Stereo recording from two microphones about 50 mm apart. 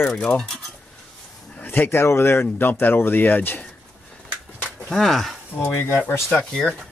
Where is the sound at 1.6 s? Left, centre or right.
Left.